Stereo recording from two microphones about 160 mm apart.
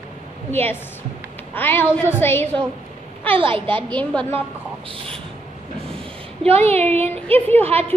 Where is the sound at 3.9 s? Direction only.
10° left (ahead or behind).